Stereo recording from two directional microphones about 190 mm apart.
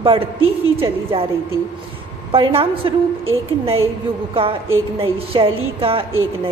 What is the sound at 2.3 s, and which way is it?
A woman's voice, 30° right (ahead or behind).